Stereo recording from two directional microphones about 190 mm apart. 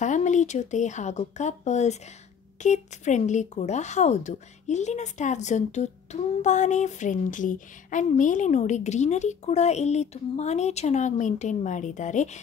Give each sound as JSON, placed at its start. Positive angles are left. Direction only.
{"t": 0.0, "sound": "speech", "side_deg": 40}